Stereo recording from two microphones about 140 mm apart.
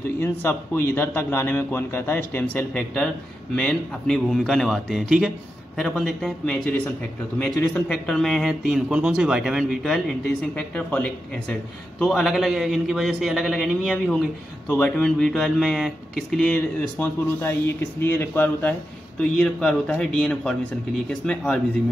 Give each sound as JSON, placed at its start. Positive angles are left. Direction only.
{"t": 0.2, "sound": "speech", "side_deg": 15}